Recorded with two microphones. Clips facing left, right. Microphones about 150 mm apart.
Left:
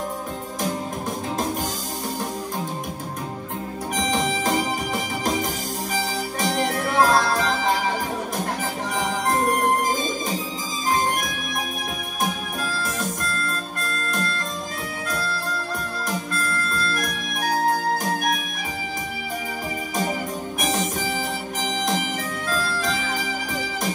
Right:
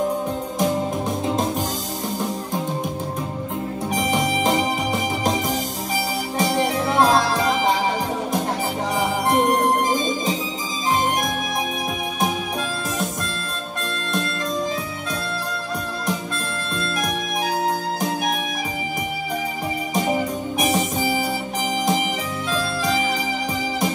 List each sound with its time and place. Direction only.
6.7 s music: 20° right (ahead or behind)